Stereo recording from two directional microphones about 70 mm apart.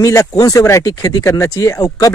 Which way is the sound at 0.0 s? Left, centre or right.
Left.